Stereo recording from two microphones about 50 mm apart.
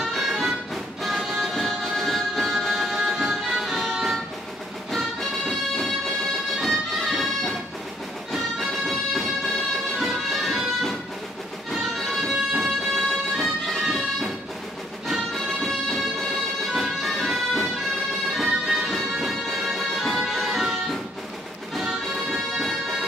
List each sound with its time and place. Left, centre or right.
0.0 s music: centre
6.6 s music: centre